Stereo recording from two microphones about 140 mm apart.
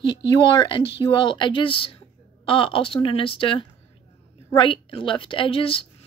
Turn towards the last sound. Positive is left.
turn(degrees=40)  # may be behind; listen again after turning